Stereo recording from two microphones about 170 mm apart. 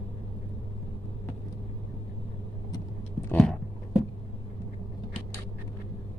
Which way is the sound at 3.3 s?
Centre (ahead or behind).